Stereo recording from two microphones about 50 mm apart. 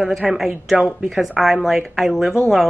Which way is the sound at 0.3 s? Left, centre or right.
Centre.